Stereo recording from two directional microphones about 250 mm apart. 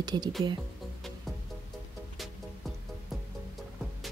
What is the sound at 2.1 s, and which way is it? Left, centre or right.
Music, centre.